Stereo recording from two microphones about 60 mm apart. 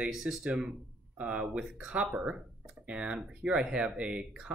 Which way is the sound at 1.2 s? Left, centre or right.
Centre.